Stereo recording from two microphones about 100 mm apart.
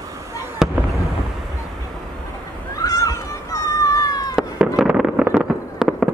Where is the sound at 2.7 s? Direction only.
35° left (ahead or behind).